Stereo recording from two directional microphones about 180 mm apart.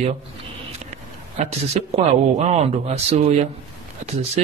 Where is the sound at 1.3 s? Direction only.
35° right (ahead or behind).